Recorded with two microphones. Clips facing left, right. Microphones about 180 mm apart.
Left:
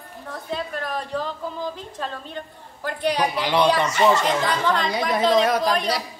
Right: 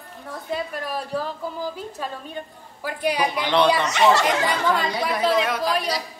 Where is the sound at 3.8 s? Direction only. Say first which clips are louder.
Even; 75° right (ahead or behind).